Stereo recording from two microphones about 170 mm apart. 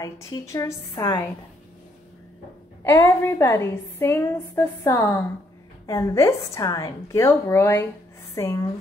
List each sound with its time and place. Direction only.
0.0 s a woman's voice: 20° left (ahead or behind)
2.8 s a woman's voice: 15° left (ahead or behind)